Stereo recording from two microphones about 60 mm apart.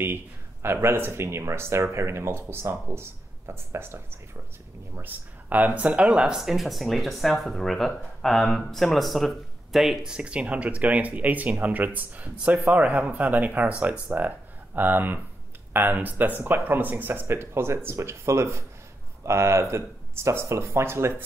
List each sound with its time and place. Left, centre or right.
0.0 s speech: right
5.0 s speech: right
6.3 s speech: centre; by 21.1 s right